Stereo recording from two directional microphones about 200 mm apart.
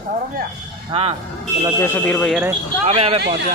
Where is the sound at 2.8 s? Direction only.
30° right (ahead or behind).